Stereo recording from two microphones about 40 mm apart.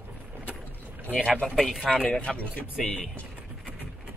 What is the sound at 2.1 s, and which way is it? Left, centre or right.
Speech, left.